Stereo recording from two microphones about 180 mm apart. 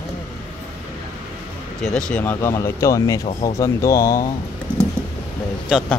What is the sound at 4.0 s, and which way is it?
Speech, 50° left (ahead or behind).